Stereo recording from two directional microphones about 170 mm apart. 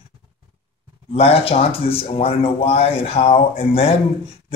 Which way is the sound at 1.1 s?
35° left (ahead or behind).